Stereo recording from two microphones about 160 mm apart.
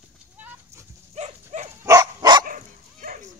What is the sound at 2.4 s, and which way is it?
Dog, 60° right (ahead or behind).